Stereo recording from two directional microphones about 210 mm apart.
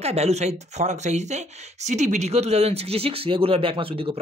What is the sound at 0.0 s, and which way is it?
Speech, 30° right (ahead or behind).